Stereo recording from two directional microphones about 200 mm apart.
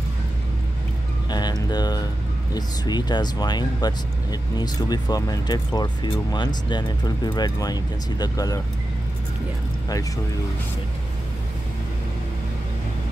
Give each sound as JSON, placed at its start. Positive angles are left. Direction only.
{"t": 1.3, "sound": "speech", "side_deg": 20}